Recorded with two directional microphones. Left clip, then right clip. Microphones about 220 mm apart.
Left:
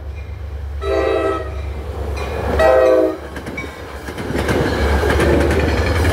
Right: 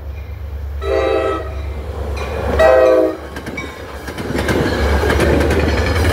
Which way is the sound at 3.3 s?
45° right (ahead or behind).